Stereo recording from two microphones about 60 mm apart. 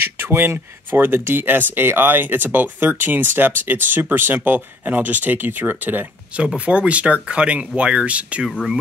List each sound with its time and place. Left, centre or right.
0.0 s speech: right
6.3 s speech: right